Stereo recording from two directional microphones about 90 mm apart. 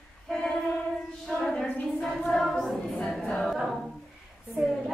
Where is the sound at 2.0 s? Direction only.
5° left (ahead or behind).